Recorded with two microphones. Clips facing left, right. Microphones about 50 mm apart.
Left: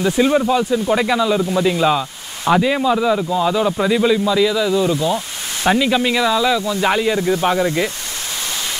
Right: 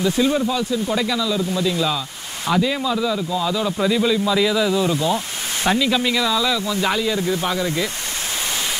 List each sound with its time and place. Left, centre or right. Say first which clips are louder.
0.0 s speech: left 3 dB; left
4.3 s speech: left 2 dB; centre
5.7 s speech: left 4 dB; centre